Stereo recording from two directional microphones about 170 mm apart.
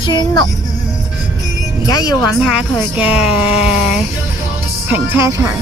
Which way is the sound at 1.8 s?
20° left (ahead or behind).